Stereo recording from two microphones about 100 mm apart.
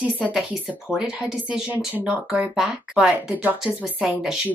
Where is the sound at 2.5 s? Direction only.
5° right (ahead or behind).